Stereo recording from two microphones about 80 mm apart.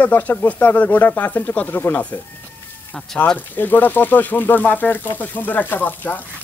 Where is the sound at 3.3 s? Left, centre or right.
Left.